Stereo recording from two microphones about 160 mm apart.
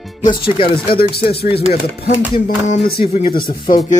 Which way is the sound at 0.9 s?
70° left (ahead or behind).